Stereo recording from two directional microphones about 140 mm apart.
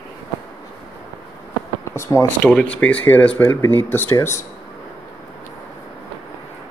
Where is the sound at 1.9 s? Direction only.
20° left (ahead or behind).